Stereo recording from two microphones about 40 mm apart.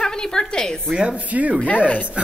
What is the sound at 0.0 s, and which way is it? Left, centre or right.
Speech, centre.